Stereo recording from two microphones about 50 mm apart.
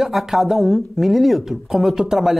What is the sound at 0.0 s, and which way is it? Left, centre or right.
Speech, centre.